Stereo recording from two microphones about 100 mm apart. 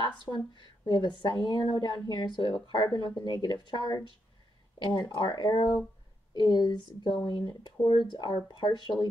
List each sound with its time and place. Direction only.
0.0 s speech: 50° left (ahead or behind)